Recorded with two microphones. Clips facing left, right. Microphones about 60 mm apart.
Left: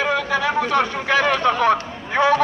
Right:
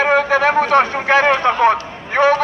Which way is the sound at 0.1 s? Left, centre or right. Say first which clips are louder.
Right 6 dB; right.